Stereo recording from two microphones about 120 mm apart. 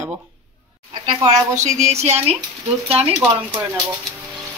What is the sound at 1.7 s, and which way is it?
Speech, 65° right (ahead or behind).